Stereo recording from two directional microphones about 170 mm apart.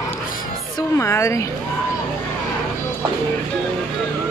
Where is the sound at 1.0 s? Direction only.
15° left (ahead or behind).